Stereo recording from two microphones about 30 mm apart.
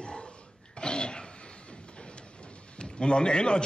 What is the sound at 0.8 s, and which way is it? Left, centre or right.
Throat clearing, left.